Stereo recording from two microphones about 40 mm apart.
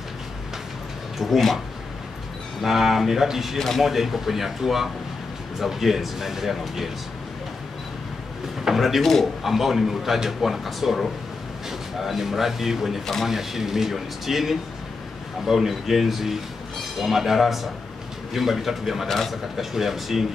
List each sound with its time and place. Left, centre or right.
1.1 s speech: centre
2.6 s speech: centre
3.5 s a man's voice: centre
3.8 s a man's voice: centre
8.7 s a man's voice: centre
9.0 s a man's voice: centre
9.4 s a man's voice: centre
19.0 s a man's voice: centre
19.5 s speech: centre